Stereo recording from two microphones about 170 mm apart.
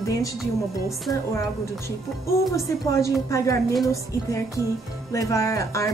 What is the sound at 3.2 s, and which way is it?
Speech, 20° left (ahead or behind).